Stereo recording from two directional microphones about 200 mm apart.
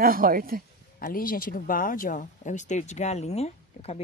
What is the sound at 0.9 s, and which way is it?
Speech, 45° left (ahead or behind).